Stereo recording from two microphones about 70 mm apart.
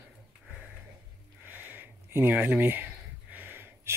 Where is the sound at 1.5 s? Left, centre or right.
Right.